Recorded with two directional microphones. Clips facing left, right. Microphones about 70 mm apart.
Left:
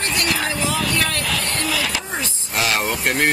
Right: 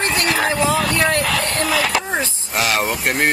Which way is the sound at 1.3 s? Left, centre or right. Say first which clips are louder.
Right 4 dB; right.